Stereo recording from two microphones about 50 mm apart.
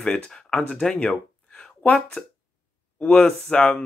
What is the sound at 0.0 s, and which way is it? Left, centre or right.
Speech, centre.